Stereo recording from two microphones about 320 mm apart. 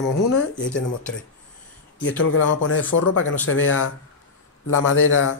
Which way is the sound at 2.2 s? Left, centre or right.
Left.